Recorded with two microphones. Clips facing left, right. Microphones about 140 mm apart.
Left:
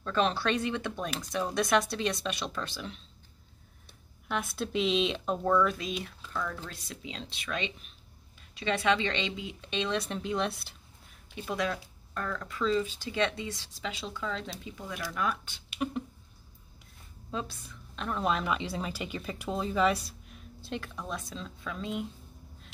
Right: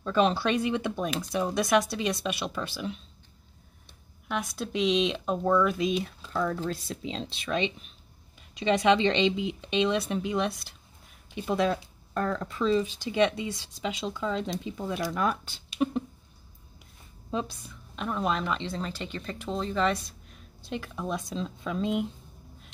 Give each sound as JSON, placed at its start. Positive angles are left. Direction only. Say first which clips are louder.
{"t": 0.0, "sound": "speech", "louder": "right 4 dB", "side_deg": -10}
{"t": 4.3, "sound": "a woman's voice", "louder": "right 1 dB", "side_deg": 0}
{"t": 5.8, "sound": "speech", "louder": "right 9 dB", "side_deg": -20}
{"t": 6.3, "sound": "speech", "louder": "right 8 dB", "side_deg": -35}
{"t": 11.3, "sound": "speech", "louder": "right 6 dB", "side_deg": -25}
{"t": 14.6, "sound": "speech", "louder": "right 7 dB", "side_deg": -30}
{"t": 17.3, "sound": "a woman's voice", "louder": "right 5 dB", "side_deg": -15}